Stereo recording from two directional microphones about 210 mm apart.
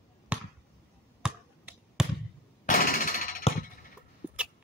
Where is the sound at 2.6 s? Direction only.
40° left (ahead or behind).